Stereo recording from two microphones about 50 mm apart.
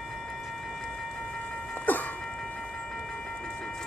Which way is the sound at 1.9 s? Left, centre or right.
Left.